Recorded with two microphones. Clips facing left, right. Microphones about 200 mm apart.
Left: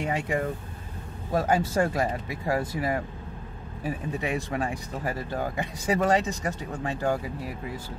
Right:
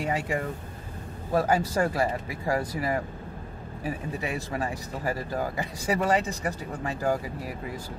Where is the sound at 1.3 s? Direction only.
40° right (ahead or behind).